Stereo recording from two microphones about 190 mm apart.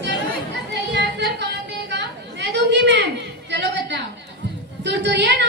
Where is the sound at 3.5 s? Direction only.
65° right (ahead or behind).